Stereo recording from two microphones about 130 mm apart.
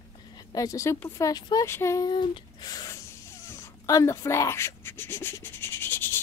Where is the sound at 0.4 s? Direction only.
30° left (ahead or behind).